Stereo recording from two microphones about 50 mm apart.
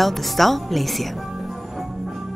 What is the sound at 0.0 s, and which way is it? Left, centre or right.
Music, centre.